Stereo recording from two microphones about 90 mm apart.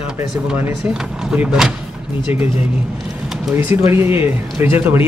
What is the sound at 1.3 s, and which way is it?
Speech, 10° right (ahead or behind).